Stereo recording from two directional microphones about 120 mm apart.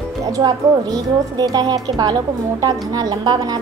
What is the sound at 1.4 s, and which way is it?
A woman's voice, 35° right (ahead or behind).